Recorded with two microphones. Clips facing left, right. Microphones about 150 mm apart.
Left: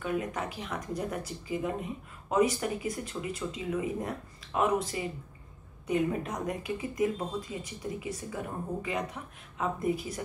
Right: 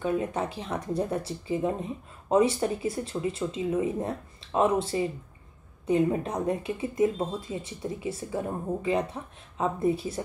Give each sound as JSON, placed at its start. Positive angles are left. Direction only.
{"t": 0.0, "sound": "speech", "side_deg": -30}